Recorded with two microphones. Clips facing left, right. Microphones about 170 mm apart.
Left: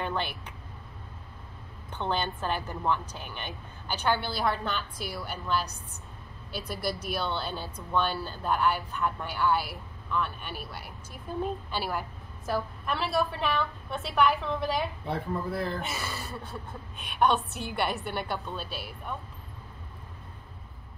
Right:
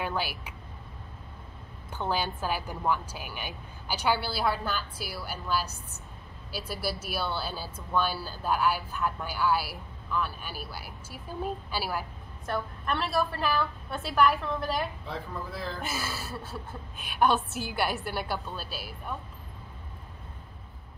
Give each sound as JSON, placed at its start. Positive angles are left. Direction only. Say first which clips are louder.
{"t": 0.0, "sound": "speech", "louder": "even", "side_deg": -5}
{"t": 1.9, "sound": "a woman's voice", "louder": "even", "side_deg": -5}
{"t": 15.0, "sound": "speech", "louder": "left 5 dB", "side_deg": 65}
{"t": 15.8, "sound": "speech", "louder": "right 1 dB", "side_deg": 0}